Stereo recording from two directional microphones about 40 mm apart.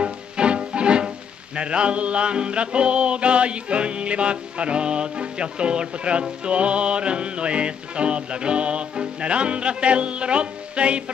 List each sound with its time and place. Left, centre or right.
0.0 s speech: right
6.4 s music: right